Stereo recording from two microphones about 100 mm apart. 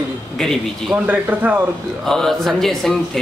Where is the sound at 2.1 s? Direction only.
5° left (ahead or behind).